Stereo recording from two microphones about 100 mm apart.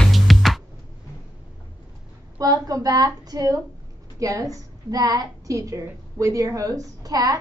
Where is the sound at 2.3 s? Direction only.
35° right (ahead or behind).